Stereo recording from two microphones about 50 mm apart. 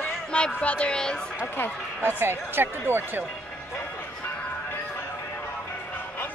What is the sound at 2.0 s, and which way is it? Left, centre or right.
Speech, right.